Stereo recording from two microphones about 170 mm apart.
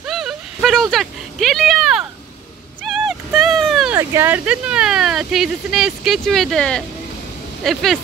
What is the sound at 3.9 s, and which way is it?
Speech, 15° right (ahead or behind).